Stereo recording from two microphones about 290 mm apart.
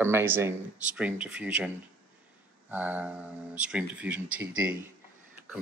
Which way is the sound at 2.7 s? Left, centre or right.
Centre.